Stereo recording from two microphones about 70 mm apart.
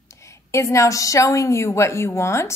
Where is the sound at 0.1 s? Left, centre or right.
Left.